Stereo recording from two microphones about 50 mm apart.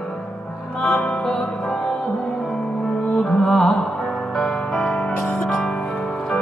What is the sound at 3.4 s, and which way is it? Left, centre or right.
Music, centre.